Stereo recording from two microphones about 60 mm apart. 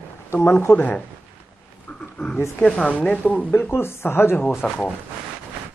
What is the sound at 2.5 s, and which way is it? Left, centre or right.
Speech, centre.